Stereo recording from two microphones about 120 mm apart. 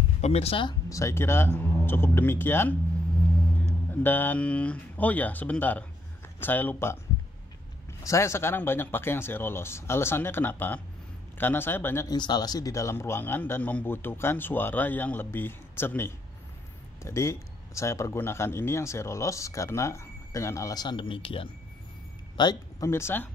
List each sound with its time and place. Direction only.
0.2 s speech: 60° left (ahead or behind)
0.8 s speech: 25° left (ahead or behind)
3.9 s speech: 15° left (ahead or behind)
8.0 s speech: 25° left (ahead or behind)
12.1 s speech: 35° left (ahead or behind)
22.4 s speech: 35° left (ahead or behind)
22.8 s speech: 20° left (ahead or behind)